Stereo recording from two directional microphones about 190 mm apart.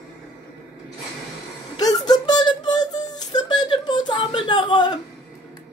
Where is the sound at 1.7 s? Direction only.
20° left (ahead or behind).